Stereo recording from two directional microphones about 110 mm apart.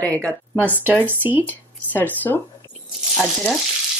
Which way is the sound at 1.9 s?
15° left (ahead or behind).